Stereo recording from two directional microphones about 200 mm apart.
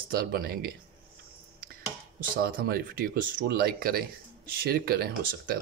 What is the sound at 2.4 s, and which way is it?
Speech, 50° right (ahead or behind).